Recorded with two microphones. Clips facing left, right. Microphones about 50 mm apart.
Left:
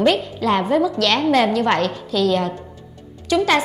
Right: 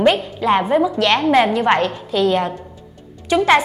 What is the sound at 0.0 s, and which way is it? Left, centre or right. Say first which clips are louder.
A woman's voice: right 2 dB; right.